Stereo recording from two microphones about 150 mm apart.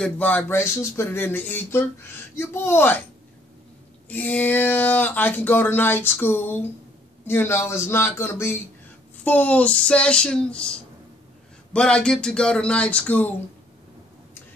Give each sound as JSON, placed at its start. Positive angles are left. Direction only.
{"t": 0.0, "sound": "speech", "side_deg": 10}
{"t": 4.1, "sound": "speech", "side_deg": 10}
{"t": 11.7, "sound": "speech", "side_deg": 5}